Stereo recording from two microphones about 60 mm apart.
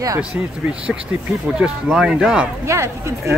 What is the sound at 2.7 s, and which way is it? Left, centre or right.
Speech, right.